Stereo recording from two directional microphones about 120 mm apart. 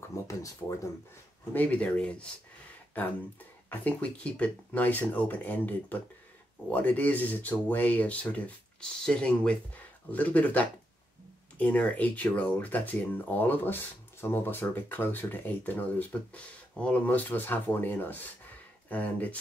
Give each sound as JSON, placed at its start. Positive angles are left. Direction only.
{"t": 0.1, "sound": "speech", "side_deg": 25}
{"t": 1.5, "sound": "speech", "side_deg": 15}
{"t": 3.7, "sound": "speech", "side_deg": 10}